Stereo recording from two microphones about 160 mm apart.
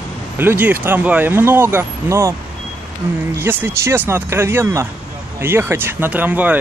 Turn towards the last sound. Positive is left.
turn(degrees=-10)  # may be behind; listen again after turning